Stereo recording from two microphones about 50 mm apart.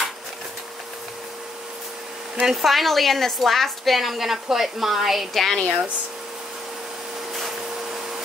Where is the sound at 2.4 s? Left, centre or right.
Centre.